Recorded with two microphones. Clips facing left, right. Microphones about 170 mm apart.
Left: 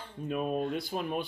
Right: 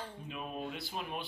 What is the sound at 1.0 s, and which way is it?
Speech, 45° left (ahead or behind).